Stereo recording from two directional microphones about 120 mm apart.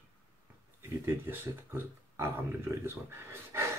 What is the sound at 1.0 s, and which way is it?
Speech, 20° right (ahead or behind).